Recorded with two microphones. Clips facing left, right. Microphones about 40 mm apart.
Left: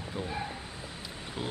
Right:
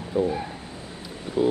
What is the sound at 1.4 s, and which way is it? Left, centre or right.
Speech, centre.